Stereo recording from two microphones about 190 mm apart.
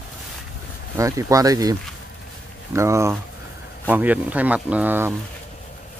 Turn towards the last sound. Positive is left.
turn(degrees=-10)  # may be behind; listen again after turning